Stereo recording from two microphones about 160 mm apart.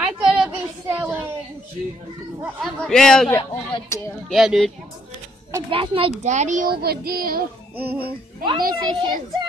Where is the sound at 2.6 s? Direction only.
Centre (ahead or behind).